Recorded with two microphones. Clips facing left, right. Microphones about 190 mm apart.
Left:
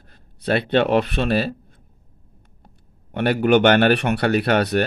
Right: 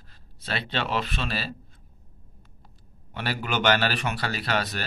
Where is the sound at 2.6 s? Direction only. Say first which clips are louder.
Left 2 dB; 55° left (ahead or behind).